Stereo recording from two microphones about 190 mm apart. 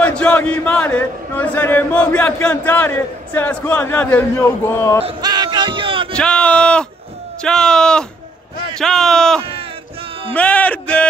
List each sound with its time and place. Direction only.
0.0 s speech: 5° left (ahead or behind)
5.0 s a sound: 20° right (ahead or behind)
6.1 s speech: 5° left (ahead or behind)
9.4 s speech: 30° right (ahead or behind)
10.3 s speech: 5° left (ahead or behind)